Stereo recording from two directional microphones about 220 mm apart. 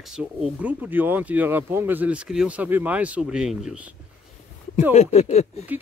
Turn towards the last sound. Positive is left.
turn(degrees=30)  # may be behind; listen again after turning